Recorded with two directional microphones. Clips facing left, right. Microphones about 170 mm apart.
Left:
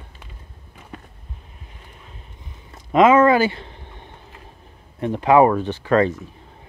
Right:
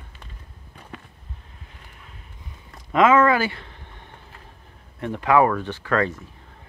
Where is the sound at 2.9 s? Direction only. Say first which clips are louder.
Left 3 dB; 20° left (ahead or behind).